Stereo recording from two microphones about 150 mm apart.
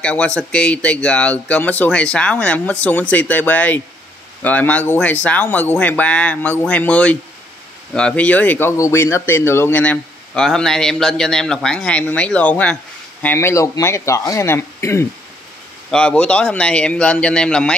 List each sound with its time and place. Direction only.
0.0 s speech: 10° left (ahead or behind)
15.9 s speech: 5° left (ahead or behind)